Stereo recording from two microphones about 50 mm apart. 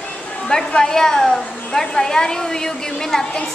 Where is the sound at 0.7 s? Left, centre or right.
Centre.